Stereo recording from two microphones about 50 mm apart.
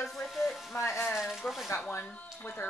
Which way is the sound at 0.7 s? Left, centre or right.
Left.